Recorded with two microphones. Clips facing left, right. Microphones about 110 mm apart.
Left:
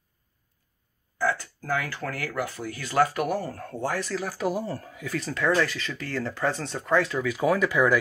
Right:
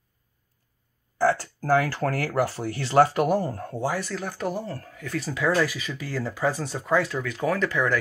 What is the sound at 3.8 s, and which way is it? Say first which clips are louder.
Speech: even; centre (ahead or behind).